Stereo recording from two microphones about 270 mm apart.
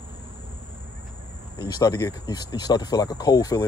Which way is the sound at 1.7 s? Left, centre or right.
Centre.